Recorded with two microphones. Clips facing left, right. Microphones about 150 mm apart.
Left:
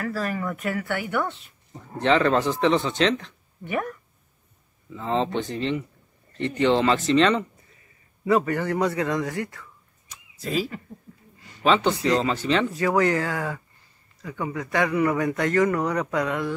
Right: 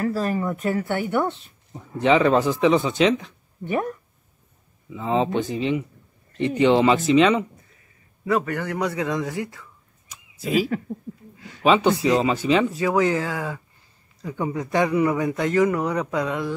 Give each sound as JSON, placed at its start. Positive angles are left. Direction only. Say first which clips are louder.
{"t": 0.0, "sound": "speech", "louder": "right 4 dB", "side_deg": -25}
{"t": 1.7, "sound": "speech", "louder": "right 3 dB", "side_deg": -10}
{"t": 3.6, "sound": "speech", "louder": "right 3 dB", "side_deg": -30}
{"t": 4.8, "sound": "a man's voice", "louder": "right 3 dB", "side_deg": -10}